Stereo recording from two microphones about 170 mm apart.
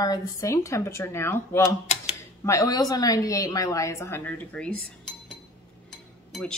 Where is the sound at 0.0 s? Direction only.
20° left (ahead or behind).